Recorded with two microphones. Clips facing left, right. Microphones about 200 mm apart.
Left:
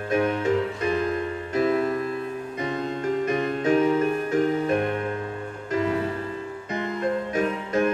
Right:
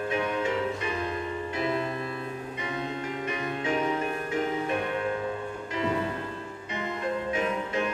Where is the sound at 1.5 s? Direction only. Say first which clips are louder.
Left 9 dB; 45° left (ahead or behind).